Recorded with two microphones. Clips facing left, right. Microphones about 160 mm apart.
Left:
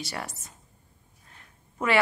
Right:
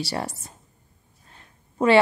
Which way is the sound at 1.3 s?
30° right (ahead or behind).